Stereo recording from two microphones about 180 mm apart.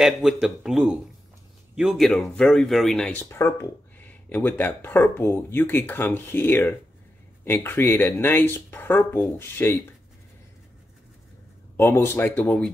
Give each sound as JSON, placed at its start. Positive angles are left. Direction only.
{"t": 0.0, "sound": "a man's voice", "side_deg": -5}
{"t": 11.7, "sound": "speech", "side_deg": 15}